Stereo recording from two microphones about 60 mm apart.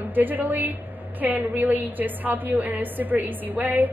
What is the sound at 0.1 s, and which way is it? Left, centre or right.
A woman's voice, right.